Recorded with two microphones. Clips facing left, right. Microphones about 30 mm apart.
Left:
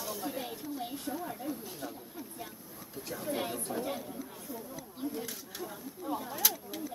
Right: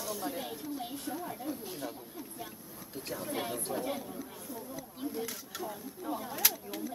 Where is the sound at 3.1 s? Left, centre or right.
Centre.